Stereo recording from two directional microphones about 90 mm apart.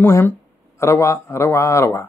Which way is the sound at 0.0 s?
25° left (ahead or behind).